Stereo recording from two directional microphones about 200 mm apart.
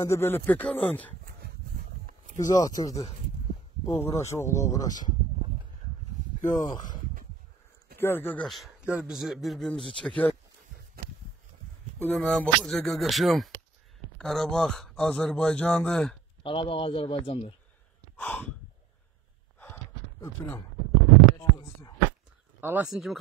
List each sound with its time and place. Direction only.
0.0 s speech: 15° left (ahead or behind)
2.3 s speech: 20° left (ahead or behind)
6.4 s speech: 15° left (ahead or behind)
8.0 s speech: 10° left (ahead or behind)
12.0 s speech: 5° left (ahead or behind)
16.4 s speech: 25° left (ahead or behind)
18.1 s gasp: 10° left (ahead or behind)
19.6 s a sound: 10° left (ahead or behind)
21.4 s a sound: 20° left (ahead or behind)
22.6 s speech: 10° right (ahead or behind)